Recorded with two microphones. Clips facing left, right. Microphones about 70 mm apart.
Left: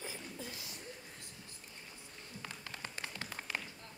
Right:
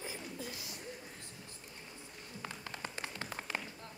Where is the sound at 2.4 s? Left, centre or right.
Right.